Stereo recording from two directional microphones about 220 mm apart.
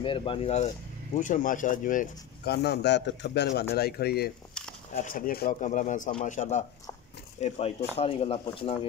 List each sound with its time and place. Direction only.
0.0 s speech: 25° left (ahead or behind)